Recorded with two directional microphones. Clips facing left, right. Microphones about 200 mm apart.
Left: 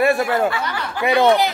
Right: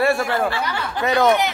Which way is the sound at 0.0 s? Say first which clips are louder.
Left 2 dB; 20° left (ahead or behind).